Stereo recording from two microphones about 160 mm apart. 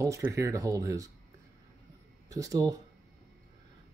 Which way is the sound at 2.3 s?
20° right (ahead or behind).